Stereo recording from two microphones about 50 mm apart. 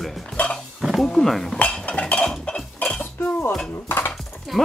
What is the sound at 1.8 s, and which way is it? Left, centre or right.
Dishes, left.